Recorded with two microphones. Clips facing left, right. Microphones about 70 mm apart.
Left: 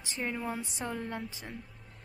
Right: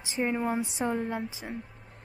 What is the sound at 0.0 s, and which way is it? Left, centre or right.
A woman's voice, centre.